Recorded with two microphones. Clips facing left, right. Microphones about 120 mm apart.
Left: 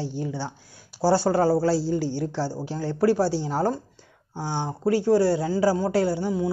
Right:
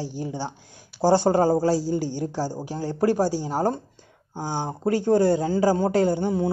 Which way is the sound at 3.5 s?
45° right (ahead or behind).